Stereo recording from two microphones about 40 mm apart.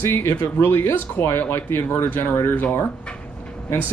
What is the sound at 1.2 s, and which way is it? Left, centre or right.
Speech, left.